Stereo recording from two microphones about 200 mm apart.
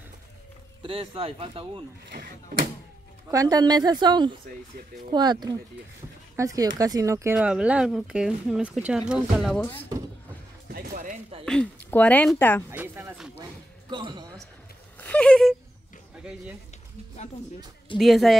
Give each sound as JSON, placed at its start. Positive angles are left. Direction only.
{"t": 0.8, "sound": "a woman's voice", "side_deg": -25}
{"t": 2.0, "sound": "speech", "side_deg": -50}
{"t": 3.3, "sound": "a woman's voice", "side_deg": -20}
{"t": 7.3, "sound": "speech", "side_deg": -5}
{"t": 10.7, "sound": "music", "side_deg": -40}
{"t": 11.4, "sound": "a woman's voice", "side_deg": 5}
{"t": 12.7, "sound": "speech", "side_deg": -10}
{"t": 13.4, "sound": "basketball bounce", "side_deg": -20}
{"t": 15.0, "sound": "a sound", "side_deg": 5}
{"t": 17.9, "sound": "speech", "side_deg": 0}